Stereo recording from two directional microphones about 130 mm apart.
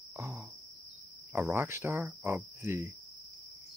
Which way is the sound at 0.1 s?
25° right (ahead or behind).